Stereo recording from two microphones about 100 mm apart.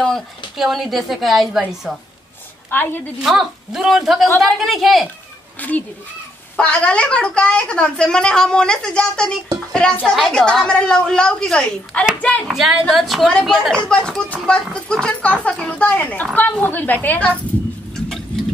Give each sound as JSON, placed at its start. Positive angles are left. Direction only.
{"t": 0.6, "sound": "a woman's voice", "side_deg": 0}
{"t": 2.7, "sound": "a woman's voice", "side_deg": 20}
{"t": 3.2, "sound": "a woman's voice", "side_deg": -5}
{"t": 5.6, "sound": "a woman's voice", "side_deg": 15}
{"t": 12.4, "sound": "a woman's voice", "side_deg": -5}
{"t": 18.0, "sound": "a sound", "side_deg": 5}